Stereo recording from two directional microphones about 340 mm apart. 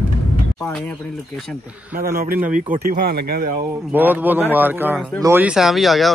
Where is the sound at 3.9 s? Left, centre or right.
Centre.